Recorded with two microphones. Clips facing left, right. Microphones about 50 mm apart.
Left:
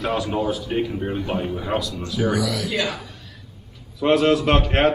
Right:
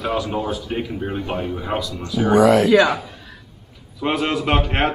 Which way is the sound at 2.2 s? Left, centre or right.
Right.